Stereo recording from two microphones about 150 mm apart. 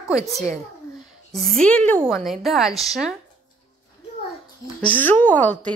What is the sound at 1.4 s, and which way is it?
A woman's voice, 5° left (ahead or behind).